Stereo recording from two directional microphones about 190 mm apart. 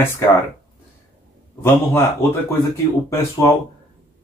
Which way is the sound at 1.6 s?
10° left (ahead or behind).